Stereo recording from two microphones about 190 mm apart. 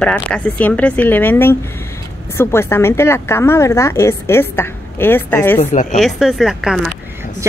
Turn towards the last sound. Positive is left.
turn(degrees=0)  # may be behind; listen again after turning